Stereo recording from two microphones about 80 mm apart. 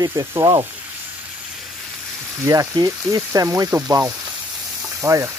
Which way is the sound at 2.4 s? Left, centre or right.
Right.